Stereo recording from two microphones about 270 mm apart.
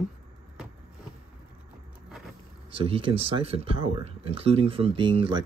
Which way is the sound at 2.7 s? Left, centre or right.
Centre.